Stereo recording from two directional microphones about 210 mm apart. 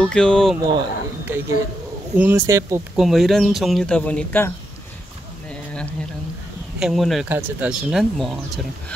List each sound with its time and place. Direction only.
0.0 s speech: 5° left (ahead or behind)
0.6 s speech: 15° right (ahead or behind)
3.0 s speech: centre (ahead or behind)
5.5 s a sound: 5° left (ahead or behind)
6.8 s speech: centre (ahead or behind)